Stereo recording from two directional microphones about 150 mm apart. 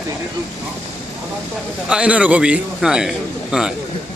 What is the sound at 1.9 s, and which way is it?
Speech, 10° right (ahead or behind).